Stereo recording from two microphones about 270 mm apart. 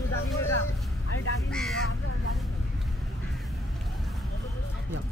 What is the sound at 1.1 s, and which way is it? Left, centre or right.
Vehicle, left.